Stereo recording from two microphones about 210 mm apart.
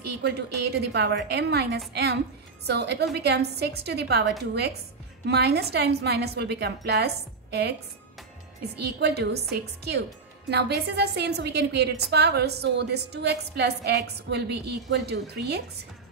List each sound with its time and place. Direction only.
0.0 s a woman's voice: 50° right (ahead or behind)
8.8 s a woman's voice: 50° right (ahead or behind)